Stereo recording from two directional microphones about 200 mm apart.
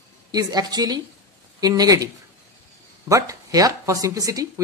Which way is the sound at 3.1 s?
15° right (ahead or behind).